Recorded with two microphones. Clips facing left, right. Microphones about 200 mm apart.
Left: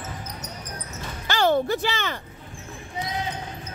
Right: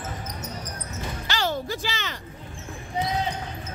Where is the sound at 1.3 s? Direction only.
55° left (ahead or behind).